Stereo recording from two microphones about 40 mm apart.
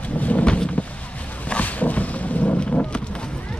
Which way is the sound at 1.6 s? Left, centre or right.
Left.